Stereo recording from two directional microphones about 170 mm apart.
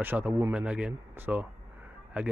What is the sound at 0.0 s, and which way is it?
Speech, 10° right (ahead or behind).